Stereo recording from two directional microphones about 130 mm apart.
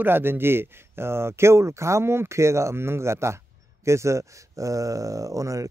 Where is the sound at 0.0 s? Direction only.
15° right (ahead or behind).